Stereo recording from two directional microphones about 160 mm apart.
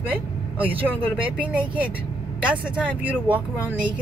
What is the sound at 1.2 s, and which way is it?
Speech, 10° right (ahead or behind).